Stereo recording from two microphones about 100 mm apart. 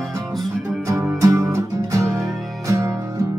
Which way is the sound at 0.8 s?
30° right (ahead or behind).